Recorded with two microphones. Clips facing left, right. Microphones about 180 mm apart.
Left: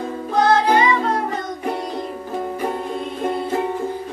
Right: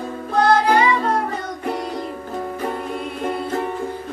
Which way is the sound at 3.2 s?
15° left (ahead or behind).